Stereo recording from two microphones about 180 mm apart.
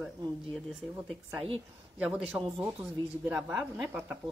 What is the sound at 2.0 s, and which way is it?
Speech, 5° right (ahead or behind).